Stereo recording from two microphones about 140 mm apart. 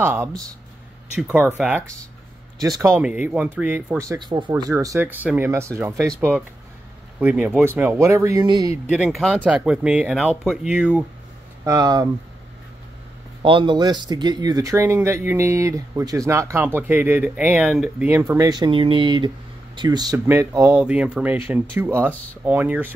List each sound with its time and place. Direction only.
0.0 s speech: 20° right (ahead or behind)
2.6 s speech: 25° right (ahead or behind)
2.9 s speech: 10° right (ahead or behind); by 8.7 s 30° right (ahead or behind)
8.9 s speech: 5° right (ahead or behind)
11.6 s speech: 25° right (ahead or behind)
13.4 s speech: 40° right (ahead or behind); by 18.0 s 5° right (ahead or behind)
18.0 s speech: 15° right (ahead or behind)
20.7 s speech: 5° right (ahead or behind)